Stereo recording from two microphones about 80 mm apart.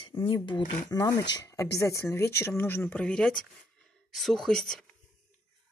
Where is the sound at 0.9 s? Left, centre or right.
Left.